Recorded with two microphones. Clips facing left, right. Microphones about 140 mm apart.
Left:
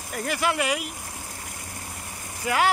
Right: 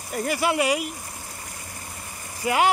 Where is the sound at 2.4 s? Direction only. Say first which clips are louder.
Right 2 dB; 10° right (ahead or behind).